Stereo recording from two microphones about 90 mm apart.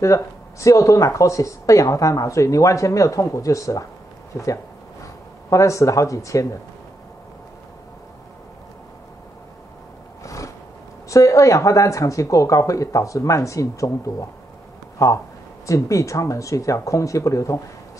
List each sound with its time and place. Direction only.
0.0 s speech: 35° left (ahead or behind)
10.2 s a sound: 35° left (ahead or behind)
11.1 s speech: 35° left (ahead or behind)